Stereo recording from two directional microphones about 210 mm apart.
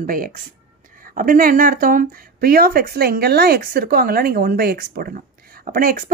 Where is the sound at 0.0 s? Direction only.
40° right (ahead or behind).